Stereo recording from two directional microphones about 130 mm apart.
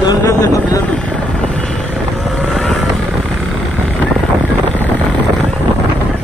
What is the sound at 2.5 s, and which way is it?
Vehicle, centre (ahead or behind).